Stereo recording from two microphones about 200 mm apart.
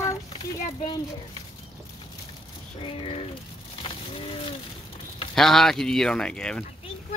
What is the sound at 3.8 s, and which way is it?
Crushing, 25° left (ahead or behind).